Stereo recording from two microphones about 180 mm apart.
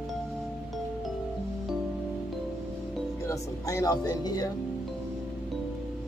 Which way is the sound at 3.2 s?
20° left (ahead or behind).